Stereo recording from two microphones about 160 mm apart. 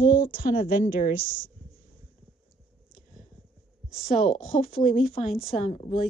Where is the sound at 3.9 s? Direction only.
60° left (ahead or behind).